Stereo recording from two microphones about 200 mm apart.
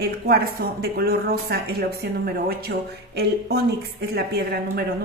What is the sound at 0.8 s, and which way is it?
Speech, 50° right (ahead or behind).